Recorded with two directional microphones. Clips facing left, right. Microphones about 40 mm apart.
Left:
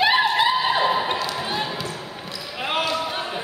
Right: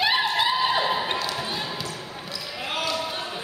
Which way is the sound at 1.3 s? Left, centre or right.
Left.